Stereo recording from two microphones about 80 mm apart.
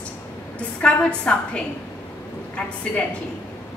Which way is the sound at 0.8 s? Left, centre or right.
Centre.